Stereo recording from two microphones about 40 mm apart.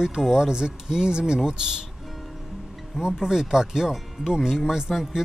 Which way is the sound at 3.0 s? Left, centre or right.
Centre.